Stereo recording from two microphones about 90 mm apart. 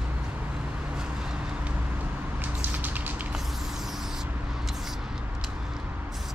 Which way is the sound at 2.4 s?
20° right (ahead or behind).